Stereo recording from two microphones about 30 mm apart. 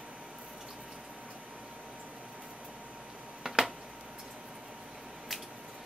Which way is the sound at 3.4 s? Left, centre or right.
Right.